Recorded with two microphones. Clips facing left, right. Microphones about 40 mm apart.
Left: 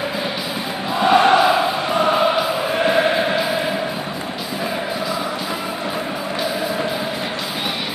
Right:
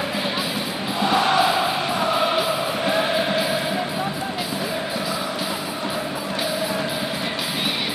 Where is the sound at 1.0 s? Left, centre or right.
Left.